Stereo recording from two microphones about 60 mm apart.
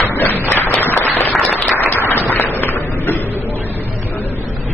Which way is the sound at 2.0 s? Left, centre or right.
Left.